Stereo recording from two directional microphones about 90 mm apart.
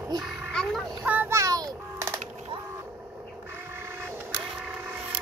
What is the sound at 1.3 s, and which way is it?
Music, 35° right (ahead or behind).